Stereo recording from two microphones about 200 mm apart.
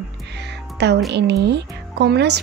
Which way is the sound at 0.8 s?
60° right (ahead or behind).